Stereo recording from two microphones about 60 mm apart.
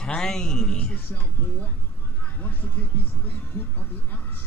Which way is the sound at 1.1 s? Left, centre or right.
Left.